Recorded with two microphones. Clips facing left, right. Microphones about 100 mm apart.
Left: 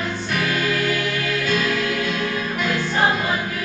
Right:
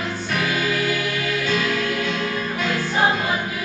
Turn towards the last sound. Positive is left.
turn(degrees=-5)  # may be behind; listen again after turning